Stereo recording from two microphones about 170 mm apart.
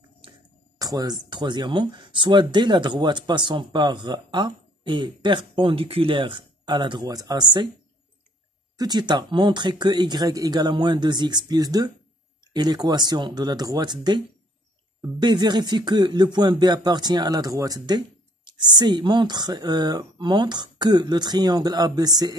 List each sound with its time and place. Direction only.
0.7 s speech: 20° right (ahead or behind)
8.7 s speech: 25° right (ahead or behind)